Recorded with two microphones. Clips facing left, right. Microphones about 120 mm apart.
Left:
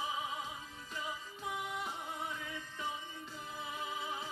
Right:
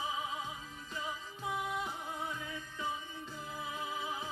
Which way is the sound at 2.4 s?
15° right (ahead or behind).